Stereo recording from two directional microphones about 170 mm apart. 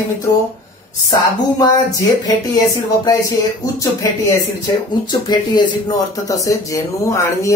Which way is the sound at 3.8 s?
20° left (ahead or behind).